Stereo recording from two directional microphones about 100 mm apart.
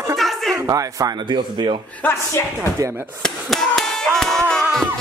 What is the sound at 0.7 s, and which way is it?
Speech, 35° right (ahead or behind).